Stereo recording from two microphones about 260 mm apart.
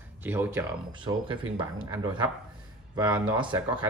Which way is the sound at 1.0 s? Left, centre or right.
Centre.